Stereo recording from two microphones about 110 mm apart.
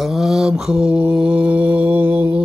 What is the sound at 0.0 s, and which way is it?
Mantra, centre (ahead or behind).